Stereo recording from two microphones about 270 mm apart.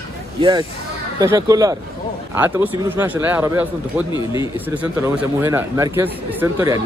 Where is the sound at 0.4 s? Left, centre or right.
Centre.